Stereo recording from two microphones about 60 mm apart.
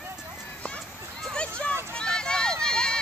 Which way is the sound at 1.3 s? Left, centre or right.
Centre.